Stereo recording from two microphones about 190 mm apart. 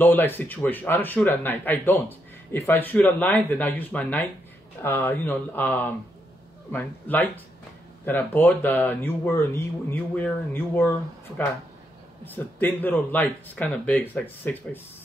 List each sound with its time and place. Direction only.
0.0 s speech: 10° left (ahead or behind)
12.3 s speech: 10° left (ahead or behind)